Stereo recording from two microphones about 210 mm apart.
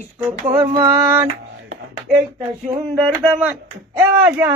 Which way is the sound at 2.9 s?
10° right (ahead or behind).